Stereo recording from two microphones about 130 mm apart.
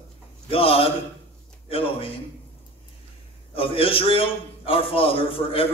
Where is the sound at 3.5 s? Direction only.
45° left (ahead or behind).